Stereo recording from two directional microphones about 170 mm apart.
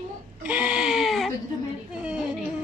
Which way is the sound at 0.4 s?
10° right (ahead or behind).